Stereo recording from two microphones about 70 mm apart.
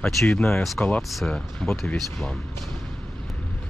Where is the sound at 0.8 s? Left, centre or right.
Centre.